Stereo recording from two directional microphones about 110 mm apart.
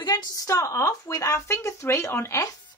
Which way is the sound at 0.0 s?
35° left (ahead or behind).